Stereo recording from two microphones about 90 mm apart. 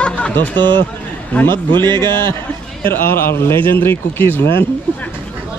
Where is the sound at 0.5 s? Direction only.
60° right (ahead or behind).